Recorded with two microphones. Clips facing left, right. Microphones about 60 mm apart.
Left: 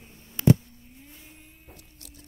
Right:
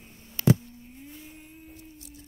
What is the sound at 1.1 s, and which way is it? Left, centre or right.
Vehicle, centre.